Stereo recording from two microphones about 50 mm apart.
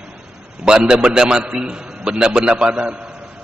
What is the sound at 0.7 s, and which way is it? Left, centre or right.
A man's voice, centre.